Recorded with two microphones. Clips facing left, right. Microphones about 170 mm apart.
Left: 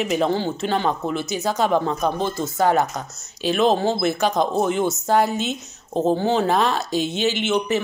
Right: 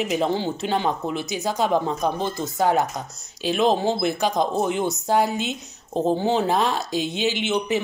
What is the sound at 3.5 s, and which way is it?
A woman's voice, 15° right (ahead or behind).